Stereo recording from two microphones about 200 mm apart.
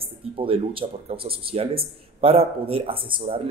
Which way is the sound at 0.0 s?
25° right (ahead or behind).